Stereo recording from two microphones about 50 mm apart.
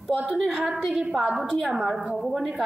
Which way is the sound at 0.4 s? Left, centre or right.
Centre.